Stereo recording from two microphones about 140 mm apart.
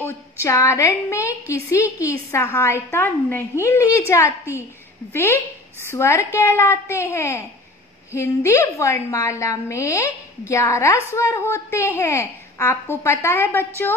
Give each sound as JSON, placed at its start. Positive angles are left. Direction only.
{"t": 0.0, "sound": "a woman's voice", "side_deg": 20}